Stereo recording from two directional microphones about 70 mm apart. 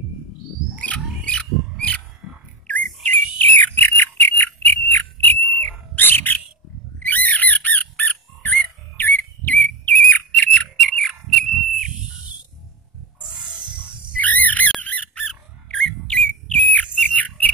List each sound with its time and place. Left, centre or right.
0.7 s a sound: centre
2.7 s bird: left
7.0 s rodents: left
11.0 s a sound: centre
12.1 s cricket: right
13.2 s music: centre
14.1 s bird: left
14.8 s squawk: left
15.2 s bird: centre